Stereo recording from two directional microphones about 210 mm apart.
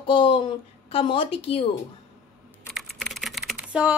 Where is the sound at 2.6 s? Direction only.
Centre (ahead or behind).